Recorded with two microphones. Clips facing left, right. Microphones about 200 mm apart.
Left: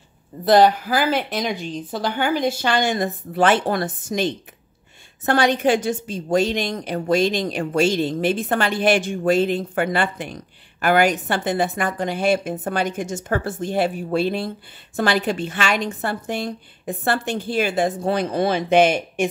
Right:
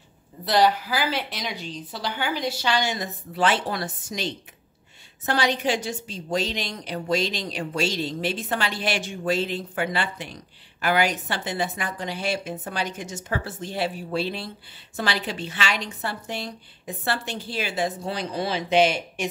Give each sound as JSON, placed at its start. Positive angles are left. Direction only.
{"t": 0.5, "sound": "a woman's voice", "side_deg": 50}